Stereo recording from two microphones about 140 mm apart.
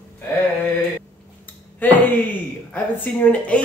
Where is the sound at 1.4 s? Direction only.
10° left (ahead or behind).